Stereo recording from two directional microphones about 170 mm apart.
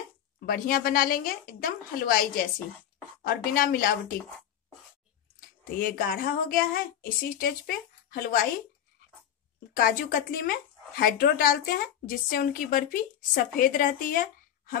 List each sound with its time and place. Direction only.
0.5 s speech: 60° left (ahead or behind)
5.8 s speech: 55° left (ahead or behind)
9.8 s speech: 55° left (ahead or behind)